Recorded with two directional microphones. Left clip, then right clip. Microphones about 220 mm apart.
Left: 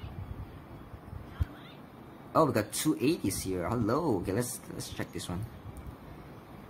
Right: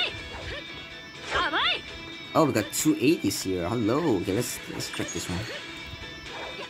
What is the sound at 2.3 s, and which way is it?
Speech, 20° right (ahead or behind).